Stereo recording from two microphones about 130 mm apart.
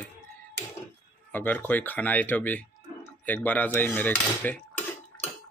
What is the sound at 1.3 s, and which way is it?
Speech, 15° left (ahead or behind).